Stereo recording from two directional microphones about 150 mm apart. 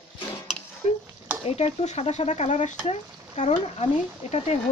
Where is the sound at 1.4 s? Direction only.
40° left (ahead or behind).